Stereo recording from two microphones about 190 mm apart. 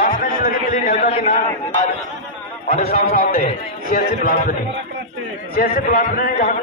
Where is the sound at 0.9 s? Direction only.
35° left (ahead or behind).